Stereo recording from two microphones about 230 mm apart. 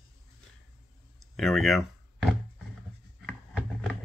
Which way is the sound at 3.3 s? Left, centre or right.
Centre.